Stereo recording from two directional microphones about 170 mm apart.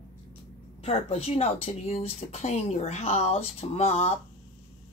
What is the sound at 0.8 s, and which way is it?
Speech, 35° left (ahead or behind).